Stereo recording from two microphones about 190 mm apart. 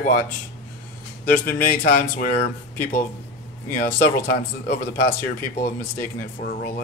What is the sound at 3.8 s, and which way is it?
Speech, 50° left (ahead or behind).